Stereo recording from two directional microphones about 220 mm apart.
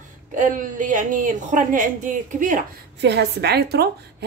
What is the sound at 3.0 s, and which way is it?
Speech, 50° right (ahead or behind).